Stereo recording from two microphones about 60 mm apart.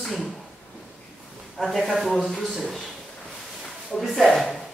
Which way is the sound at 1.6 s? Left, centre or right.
Centre.